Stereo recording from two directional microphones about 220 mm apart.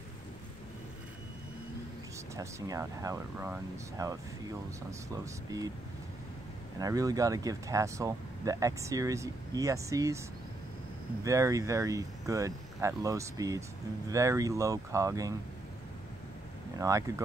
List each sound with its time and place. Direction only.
2.3 s speech: 15° right (ahead or behind)
5.1 s speech: 15° right (ahead or behind)
6.8 s speech: 15° right (ahead or behind)
11.2 s speech: 15° right (ahead or behind)
16.7 s speech: 15° right (ahead or behind)